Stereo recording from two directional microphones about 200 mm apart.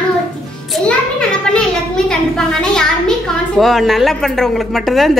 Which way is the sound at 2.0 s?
5° left (ahead or behind).